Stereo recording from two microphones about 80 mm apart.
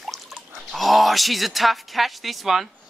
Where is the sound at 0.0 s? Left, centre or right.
Centre.